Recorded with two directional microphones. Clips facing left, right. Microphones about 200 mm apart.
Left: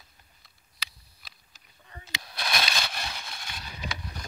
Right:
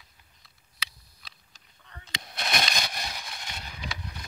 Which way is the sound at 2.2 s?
20° right (ahead or behind).